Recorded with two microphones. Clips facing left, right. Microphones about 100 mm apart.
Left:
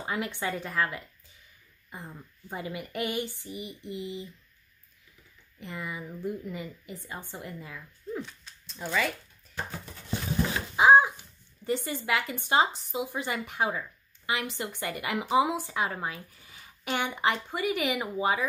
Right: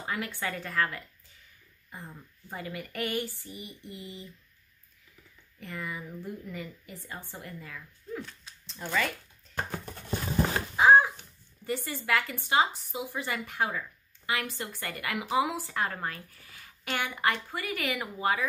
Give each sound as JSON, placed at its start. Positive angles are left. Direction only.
{"t": 0.0, "sound": "speech", "side_deg": 20}
{"t": 5.6, "sound": "speech", "side_deg": 20}
{"t": 8.8, "sound": "speech", "side_deg": 5}
{"t": 10.8, "sound": "a sound", "side_deg": 15}
{"t": 11.6, "sound": "speech", "side_deg": 20}